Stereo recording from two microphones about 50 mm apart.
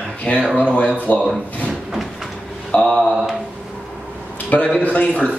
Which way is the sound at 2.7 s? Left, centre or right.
Left.